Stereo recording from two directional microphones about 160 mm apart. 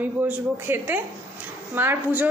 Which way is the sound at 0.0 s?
10° right (ahead or behind).